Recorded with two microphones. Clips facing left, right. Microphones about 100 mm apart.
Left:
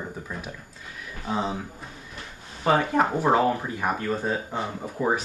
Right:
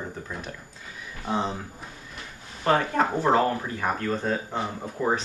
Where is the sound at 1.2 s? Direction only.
Centre (ahead or behind).